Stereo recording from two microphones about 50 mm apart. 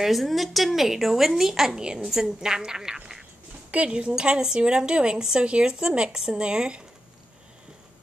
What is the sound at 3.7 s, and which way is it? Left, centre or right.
A woman's voice, right.